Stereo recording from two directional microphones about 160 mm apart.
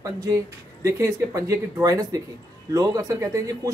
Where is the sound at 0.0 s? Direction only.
20° right (ahead or behind).